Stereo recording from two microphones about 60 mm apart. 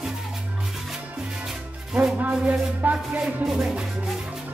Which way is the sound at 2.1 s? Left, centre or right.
Right.